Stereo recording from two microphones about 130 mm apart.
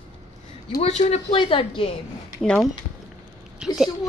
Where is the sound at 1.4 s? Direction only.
40° left (ahead or behind).